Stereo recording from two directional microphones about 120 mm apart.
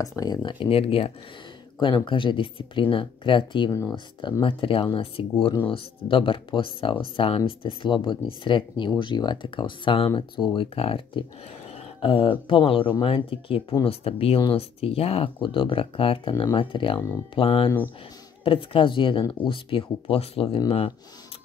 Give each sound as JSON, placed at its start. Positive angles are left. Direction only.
{"t": 0.0, "sound": "speech", "side_deg": 30}
{"t": 1.8, "sound": "speech", "side_deg": 40}